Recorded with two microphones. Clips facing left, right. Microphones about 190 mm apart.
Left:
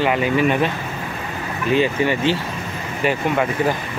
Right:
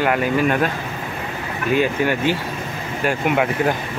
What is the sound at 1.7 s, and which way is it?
Speech, 10° right (ahead or behind).